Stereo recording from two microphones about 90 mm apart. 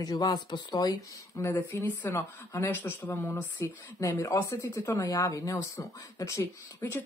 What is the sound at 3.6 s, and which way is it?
Speech, 35° left (ahead or behind).